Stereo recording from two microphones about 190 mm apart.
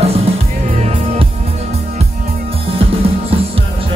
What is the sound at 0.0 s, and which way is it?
Music, 35° right (ahead or behind).